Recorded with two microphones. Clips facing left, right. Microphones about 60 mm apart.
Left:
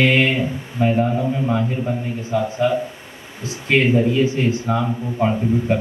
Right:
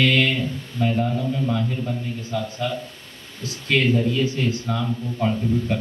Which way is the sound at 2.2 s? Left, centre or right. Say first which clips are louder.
Left 10 dB; centre.